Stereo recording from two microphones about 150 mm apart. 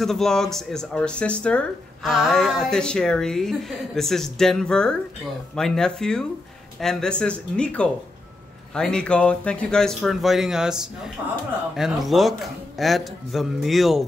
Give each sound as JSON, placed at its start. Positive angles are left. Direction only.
{"t": 0.0, "sound": "speech", "side_deg": 0}